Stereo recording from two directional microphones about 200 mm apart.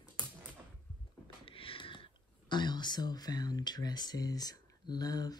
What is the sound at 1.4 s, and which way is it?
Speech, 25° left (ahead or behind).